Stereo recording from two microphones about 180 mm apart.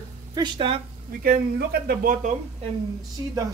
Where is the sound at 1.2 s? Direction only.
60° right (ahead or behind).